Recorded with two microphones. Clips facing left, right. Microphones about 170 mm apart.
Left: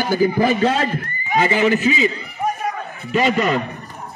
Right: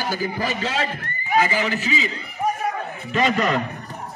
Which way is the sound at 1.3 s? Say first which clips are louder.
Left 4 dB; 25° left (ahead or behind).